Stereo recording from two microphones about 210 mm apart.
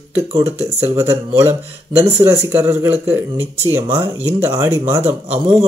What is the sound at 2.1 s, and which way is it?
Speech, 10° right (ahead or behind).